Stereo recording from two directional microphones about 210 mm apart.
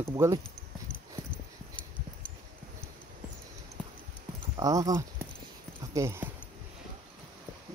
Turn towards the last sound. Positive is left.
turn(degrees=-10)  # may be behind; listen again after turning